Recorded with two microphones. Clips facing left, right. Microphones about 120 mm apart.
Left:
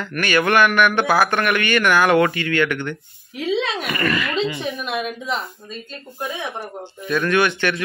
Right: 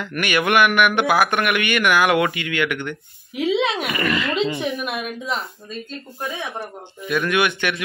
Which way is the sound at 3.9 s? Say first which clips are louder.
Even; 20° right (ahead or behind).